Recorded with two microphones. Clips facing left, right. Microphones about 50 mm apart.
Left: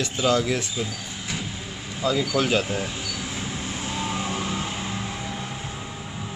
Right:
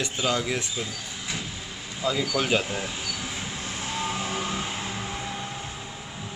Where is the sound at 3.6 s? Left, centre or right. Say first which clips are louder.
Left 2 dB; centre.